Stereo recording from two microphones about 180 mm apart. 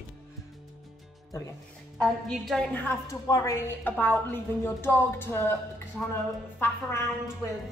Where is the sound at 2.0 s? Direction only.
Centre (ahead or behind).